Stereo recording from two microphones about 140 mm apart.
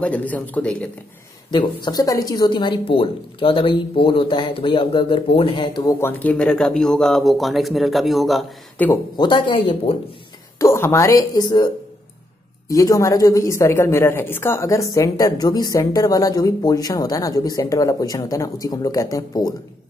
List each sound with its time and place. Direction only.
0.0 s speech: 10° left (ahead or behind)
1.5 s speech: 30° left (ahead or behind); by 8.5 s centre (ahead or behind)
8.7 s speech: 15° left (ahead or behind)
9.1 s speech: 30° left (ahead or behind)
10.6 s speech: 20° left (ahead or behind)